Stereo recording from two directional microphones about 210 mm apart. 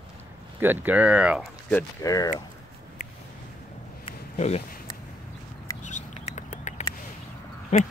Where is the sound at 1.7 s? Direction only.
10° left (ahead or behind).